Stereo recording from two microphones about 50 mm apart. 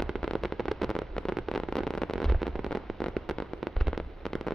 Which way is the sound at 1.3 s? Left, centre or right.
Centre.